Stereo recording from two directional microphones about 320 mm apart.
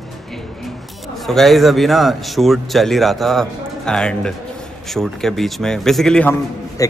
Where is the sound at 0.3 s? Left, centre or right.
Centre.